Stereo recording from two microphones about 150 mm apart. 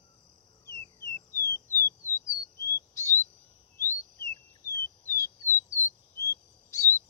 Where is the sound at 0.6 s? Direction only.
20° left (ahead or behind).